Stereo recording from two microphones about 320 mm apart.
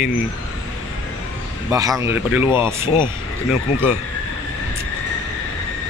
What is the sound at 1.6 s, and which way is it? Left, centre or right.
Speech, centre.